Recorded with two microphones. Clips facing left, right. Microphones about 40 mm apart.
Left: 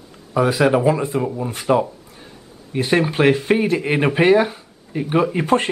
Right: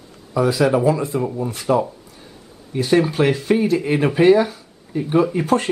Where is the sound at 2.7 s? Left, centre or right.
Left.